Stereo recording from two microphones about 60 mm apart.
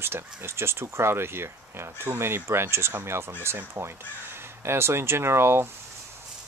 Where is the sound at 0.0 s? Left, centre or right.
Right.